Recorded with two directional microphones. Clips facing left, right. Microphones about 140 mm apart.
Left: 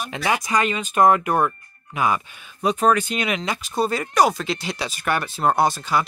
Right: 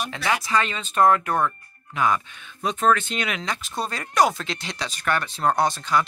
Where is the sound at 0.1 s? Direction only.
20° left (ahead or behind).